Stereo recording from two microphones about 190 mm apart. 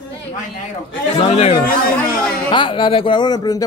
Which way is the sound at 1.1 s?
35° left (ahead or behind).